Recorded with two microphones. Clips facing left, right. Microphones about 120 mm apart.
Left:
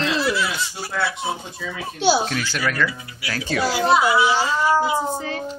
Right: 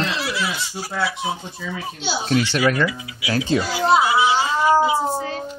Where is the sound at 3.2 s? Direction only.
20° right (ahead or behind).